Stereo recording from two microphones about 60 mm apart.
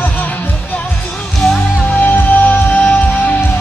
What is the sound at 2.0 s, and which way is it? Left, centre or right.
Music, left.